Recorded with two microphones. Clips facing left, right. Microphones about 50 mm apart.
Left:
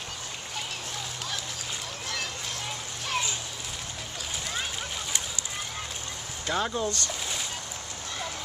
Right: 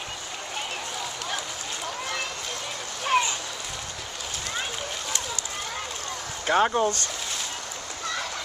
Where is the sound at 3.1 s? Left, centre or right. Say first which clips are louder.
Right 8 dB; right.